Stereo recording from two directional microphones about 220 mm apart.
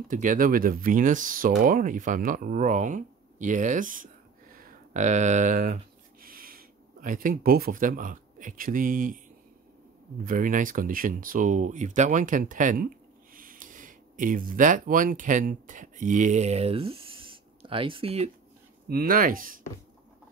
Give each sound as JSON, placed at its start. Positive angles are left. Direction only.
{"t": 0.1, "sound": "speech", "side_deg": -40}
{"t": 10.2, "sound": "speech", "side_deg": -40}
{"t": 18.9, "sound": "speech", "side_deg": -40}